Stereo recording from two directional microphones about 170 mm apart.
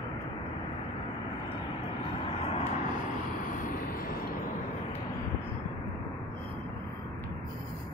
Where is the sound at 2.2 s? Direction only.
35° left (ahead or behind).